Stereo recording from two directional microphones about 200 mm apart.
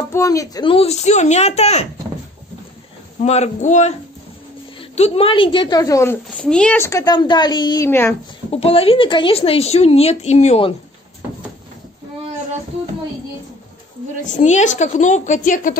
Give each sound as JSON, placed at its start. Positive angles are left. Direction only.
{"t": 0.1, "sound": "speech", "side_deg": 15}
{"t": 3.2, "sound": "a woman's voice", "side_deg": 35}
{"t": 8.5, "sound": "a woman's voice", "side_deg": 30}
{"t": 14.2, "sound": "speech", "side_deg": 35}